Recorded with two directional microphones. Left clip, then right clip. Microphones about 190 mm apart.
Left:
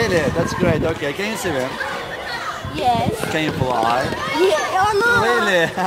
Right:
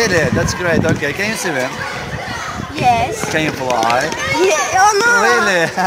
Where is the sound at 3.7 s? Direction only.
40° right (ahead or behind).